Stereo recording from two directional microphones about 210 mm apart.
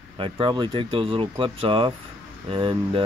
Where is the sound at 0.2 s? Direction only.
25° right (ahead or behind).